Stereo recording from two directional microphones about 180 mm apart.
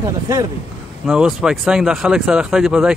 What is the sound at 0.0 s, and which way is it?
Speech, 20° right (ahead or behind).